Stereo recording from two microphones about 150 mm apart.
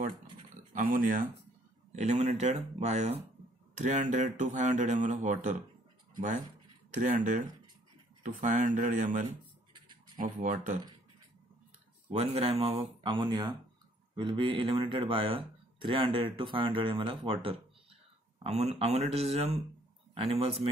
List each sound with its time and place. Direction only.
0.7 s speech: 65° right (ahead or behind)
1.9 s speech: 50° right (ahead or behind)
12.1 s speech: 45° right (ahead or behind)